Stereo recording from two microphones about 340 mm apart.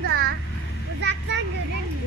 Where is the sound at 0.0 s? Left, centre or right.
Right.